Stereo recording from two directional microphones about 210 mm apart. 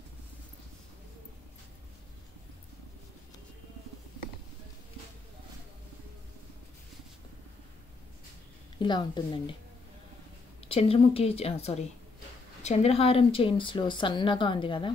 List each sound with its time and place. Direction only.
8.7 s speech: 20° left (ahead or behind)
10.6 s speech: 25° left (ahead or behind)